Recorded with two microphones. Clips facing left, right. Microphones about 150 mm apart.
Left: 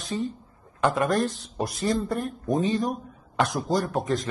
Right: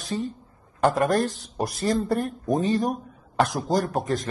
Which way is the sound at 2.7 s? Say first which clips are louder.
Right 2 dB; 45° right (ahead or behind).